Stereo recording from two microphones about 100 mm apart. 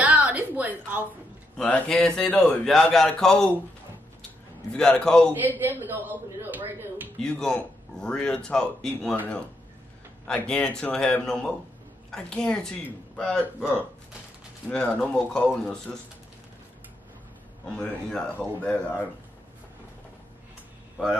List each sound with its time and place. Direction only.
0.0 s a sound: 15° right (ahead or behind)
1.6 s a man's voice: 10° left (ahead or behind)
4.7 s speech: 5° left (ahead or behind)
5.6 s a man's voice: 20° right (ahead or behind)
7.2 s speech: 5° left (ahead or behind)
10.2 s speech: 10° left (ahead or behind)
14.7 s speech: 10° left (ahead or behind)
17.7 s speech: 5° left (ahead or behind)